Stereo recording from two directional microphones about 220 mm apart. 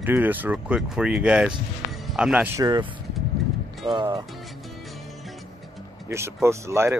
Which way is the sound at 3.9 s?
20° right (ahead or behind).